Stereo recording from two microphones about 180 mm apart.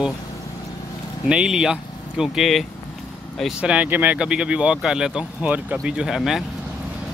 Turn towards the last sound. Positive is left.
turn(degrees=0)  # may be behind; listen again after turning